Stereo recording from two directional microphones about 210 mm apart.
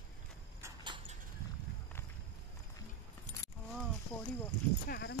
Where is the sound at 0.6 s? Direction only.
20° right (ahead or behind).